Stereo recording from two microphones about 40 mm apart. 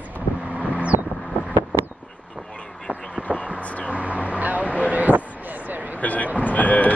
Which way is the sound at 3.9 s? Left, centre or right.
Right.